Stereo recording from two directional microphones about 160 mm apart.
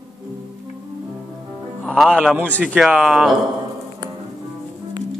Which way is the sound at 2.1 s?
5° right (ahead or behind).